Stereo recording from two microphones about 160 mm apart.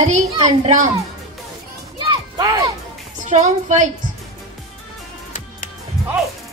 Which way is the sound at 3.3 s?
45° right (ahead or behind).